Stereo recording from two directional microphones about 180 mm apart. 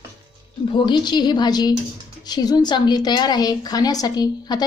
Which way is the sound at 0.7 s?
25° left (ahead or behind).